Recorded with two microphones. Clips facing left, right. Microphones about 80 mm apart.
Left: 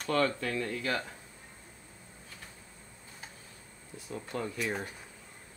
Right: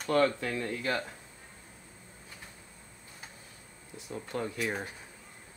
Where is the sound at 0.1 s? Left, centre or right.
Right.